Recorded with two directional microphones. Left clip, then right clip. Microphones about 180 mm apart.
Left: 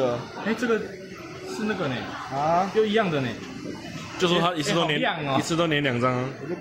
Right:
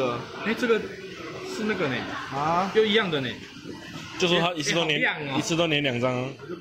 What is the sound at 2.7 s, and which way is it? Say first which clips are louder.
Speech: even; 35° left (ahead or behind).